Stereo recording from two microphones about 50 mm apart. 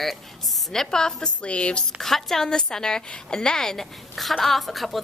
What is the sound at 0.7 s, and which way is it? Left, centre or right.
A woman's voice, centre.